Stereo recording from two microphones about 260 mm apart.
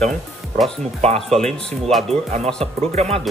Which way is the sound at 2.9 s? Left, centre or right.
Right.